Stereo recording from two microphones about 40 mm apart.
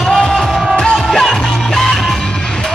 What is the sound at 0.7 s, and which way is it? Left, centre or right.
Music, centre.